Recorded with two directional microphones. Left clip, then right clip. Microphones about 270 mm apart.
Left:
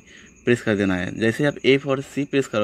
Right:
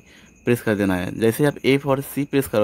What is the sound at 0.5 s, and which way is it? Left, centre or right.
Speech, centre.